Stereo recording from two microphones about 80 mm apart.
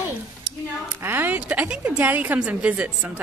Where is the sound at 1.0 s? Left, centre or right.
Right.